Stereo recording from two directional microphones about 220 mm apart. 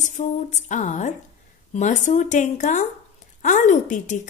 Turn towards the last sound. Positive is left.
turn(degrees=35)  # may be behind; listen again after turning